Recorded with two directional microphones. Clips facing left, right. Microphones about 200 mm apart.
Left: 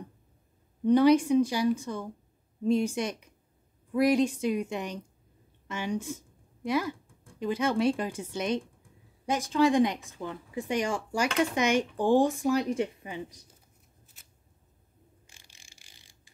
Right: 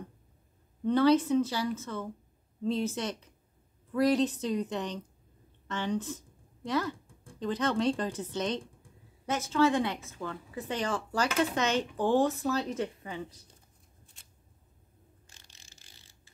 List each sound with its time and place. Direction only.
0.8 s a woman's voice: 15° left (ahead or behind)
14.2 s a sound: 5° left (ahead or behind)
15.2 s mechanisms: 10° left (ahead or behind)